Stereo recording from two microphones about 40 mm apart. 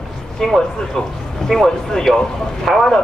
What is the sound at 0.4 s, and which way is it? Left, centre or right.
A man's voice, centre.